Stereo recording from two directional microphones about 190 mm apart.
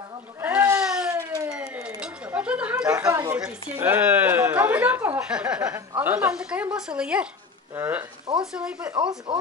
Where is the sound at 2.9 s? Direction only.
20° right (ahead or behind).